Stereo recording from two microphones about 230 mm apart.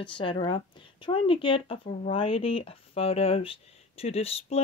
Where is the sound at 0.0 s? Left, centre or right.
Left.